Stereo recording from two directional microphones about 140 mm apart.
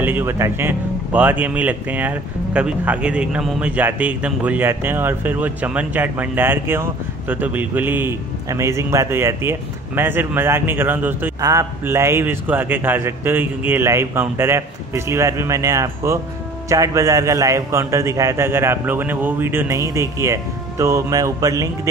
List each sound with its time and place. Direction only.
0.0 s a man's voice: 15° right (ahead or behind)